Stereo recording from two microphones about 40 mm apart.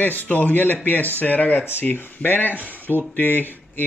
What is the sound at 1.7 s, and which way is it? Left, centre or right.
Speech, left.